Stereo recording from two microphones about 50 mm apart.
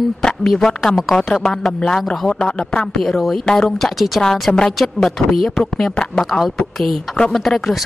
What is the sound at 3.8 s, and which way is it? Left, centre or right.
Speech, centre.